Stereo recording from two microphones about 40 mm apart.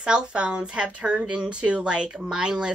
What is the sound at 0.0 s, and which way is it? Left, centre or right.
A woman's voice, right.